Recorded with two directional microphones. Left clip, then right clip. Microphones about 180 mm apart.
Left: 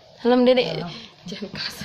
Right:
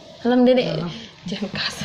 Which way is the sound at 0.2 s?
30° left (ahead or behind).